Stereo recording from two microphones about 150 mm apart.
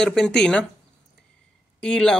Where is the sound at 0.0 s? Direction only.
5° left (ahead or behind).